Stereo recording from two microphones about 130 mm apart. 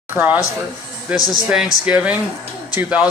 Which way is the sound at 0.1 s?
15° right (ahead or behind).